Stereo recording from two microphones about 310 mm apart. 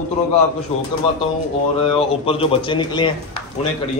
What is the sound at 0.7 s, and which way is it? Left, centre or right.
Speech, centre.